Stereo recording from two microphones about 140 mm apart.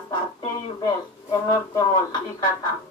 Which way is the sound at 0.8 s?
25° left (ahead or behind).